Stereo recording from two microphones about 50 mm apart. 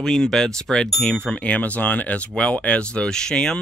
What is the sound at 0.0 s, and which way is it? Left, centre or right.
Speech, centre.